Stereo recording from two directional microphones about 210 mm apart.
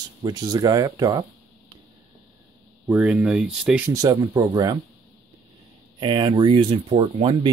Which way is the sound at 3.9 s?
15° right (ahead or behind).